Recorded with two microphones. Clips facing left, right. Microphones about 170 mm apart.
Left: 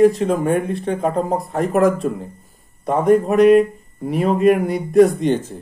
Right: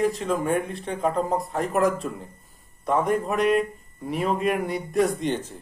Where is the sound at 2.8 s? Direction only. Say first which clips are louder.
Left 8 dB; 40° left (ahead or behind).